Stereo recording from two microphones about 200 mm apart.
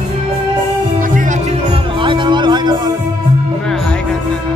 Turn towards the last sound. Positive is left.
turn(degrees=-20)  # may be behind; listen again after turning